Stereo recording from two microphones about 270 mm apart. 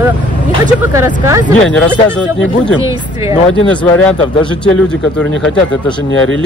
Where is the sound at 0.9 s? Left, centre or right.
Centre.